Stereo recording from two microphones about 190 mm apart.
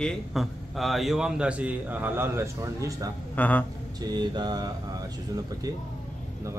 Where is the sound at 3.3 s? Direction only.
10° left (ahead or behind).